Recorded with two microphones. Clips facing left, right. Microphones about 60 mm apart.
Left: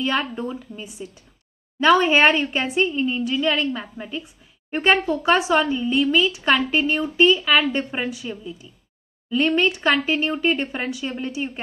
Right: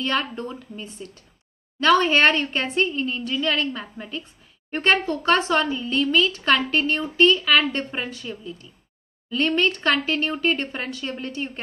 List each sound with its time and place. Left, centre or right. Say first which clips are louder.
0.0 s a woman's voice: left 2 dB; centre